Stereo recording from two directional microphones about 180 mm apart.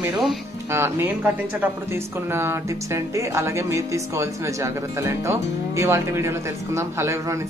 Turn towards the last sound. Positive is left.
turn(degrees=-15)  # may be behind; listen again after turning